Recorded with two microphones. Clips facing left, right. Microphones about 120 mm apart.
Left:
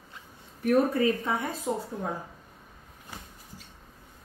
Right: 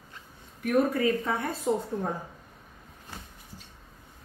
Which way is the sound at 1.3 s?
15° left (ahead or behind).